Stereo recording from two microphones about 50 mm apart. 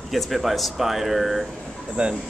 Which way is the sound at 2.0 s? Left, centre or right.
Right.